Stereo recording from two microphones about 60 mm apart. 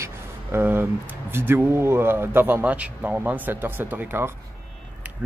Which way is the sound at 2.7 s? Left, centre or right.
Right.